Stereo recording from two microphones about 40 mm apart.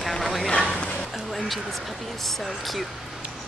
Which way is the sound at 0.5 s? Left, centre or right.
Left.